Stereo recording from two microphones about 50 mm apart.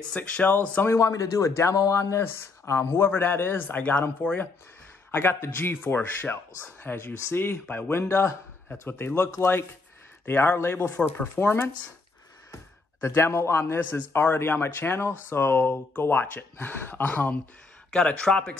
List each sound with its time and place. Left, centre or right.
0.1 s speech: left
0.8 s speech: left
2.2 s speech: left
4.2 s speech: left
5.1 s speech: left
8.8 s speech: left
9.4 s speech: left
10.2 s speech: left
13.0 s speech: left
13.7 s speech: left
14.1 s speech: left
16.0 s speech: left
17.9 s speech: centre